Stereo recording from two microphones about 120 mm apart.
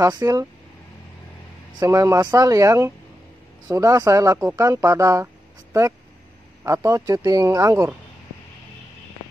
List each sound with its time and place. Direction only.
0.0 s speech: 30° right (ahead or behind)
1.8 s speech: 25° right (ahead or behind)